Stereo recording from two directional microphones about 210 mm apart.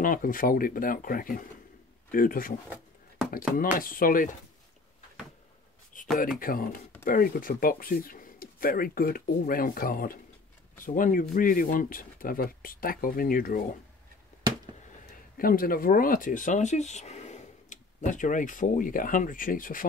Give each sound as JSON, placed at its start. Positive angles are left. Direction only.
{"t": 0.0, "sound": "speech", "side_deg": 40}
{"t": 6.1, "sound": "speech", "side_deg": 40}
{"t": 15.3, "sound": "speech", "side_deg": 45}